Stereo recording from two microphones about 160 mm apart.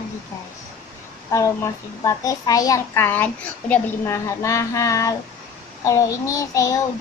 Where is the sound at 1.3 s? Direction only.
20° left (ahead or behind).